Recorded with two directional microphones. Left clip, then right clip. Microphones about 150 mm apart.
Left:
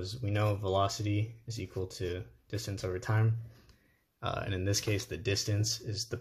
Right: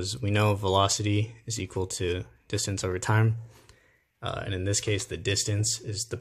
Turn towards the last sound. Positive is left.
turn(degrees=-15)  # may be behind; listen again after turning